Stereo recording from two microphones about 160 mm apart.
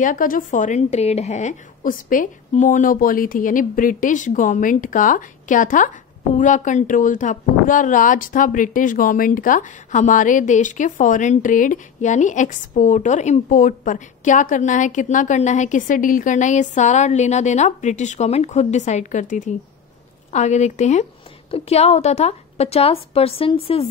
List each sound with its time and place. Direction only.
0.0 s a woman's voice: 55° left (ahead or behind); by 23.9 s 35° left (ahead or behind)